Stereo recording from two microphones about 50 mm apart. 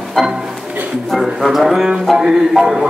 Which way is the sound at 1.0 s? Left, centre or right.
Centre.